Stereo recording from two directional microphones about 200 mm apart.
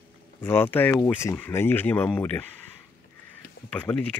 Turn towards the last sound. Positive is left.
turn(degrees=5)  # may be behind; listen again after turning